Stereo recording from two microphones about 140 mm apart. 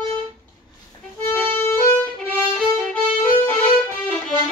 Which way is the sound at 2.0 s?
5° left (ahead or behind).